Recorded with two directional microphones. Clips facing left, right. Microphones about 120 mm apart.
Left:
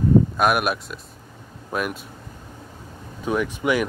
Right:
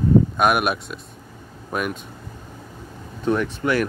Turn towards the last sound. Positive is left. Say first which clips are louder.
# even
turn(degrees=10)  # may be behind; listen again after turning